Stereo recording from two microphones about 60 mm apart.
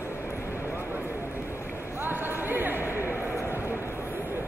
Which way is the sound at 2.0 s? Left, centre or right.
Right.